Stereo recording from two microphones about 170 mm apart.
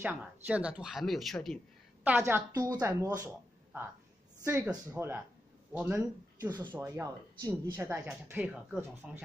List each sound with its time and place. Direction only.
0.0 s speech: 10° right (ahead or behind)
2.0 s speech: 10° right (ahead or behind)
2.5 s speech: 25° right (ahead or behind)
2.8 s speech: 15° right (ahead or behind)
4.6 s speech: 15° right (ahead or behind)